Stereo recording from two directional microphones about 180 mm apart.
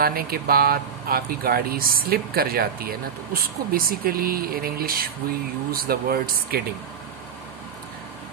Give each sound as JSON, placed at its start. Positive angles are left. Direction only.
{"t": 0.0, "sound": "speech", "side_deg": -55}